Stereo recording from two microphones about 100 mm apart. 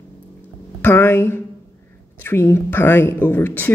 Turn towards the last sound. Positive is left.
turn(degrees=20)  # may be behind; listen again after turning